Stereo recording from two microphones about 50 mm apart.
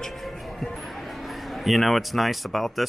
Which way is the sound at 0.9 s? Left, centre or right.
Centre.